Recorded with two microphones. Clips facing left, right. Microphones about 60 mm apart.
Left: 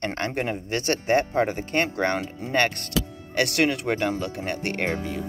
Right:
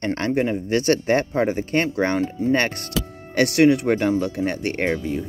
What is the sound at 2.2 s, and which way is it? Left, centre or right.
Speech, left.